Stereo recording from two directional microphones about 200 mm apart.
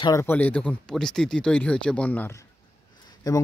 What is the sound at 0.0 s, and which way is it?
Speech, 15° left (ahead or behind).